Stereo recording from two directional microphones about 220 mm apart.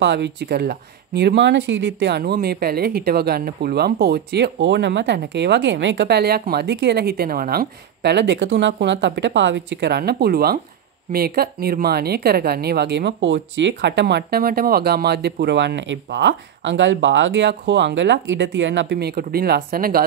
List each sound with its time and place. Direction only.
0.0 s speech: 50° right (ahead or behind)